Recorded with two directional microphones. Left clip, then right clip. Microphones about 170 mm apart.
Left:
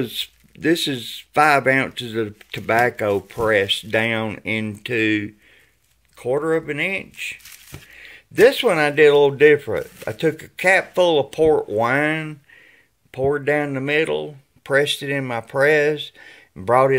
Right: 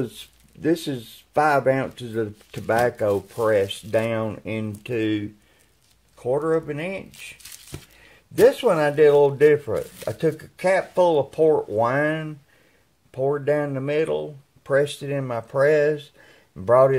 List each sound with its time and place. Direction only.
0.0 s speech: 10° left (ahead or behind)